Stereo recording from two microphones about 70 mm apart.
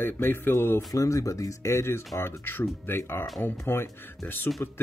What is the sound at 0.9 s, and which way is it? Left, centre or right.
Speech, left.